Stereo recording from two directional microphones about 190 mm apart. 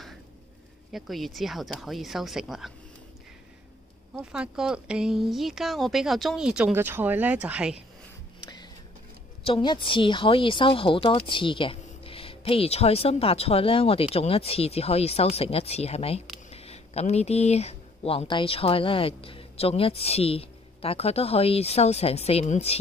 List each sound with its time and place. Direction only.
0.9 s speech: centre (ahead or behind)
4.1 s speech: 5° right (ahead or behind)
8.4 s music: 20° left (ahead or behind)
9.4 s speech: 25° left (ahead or behind)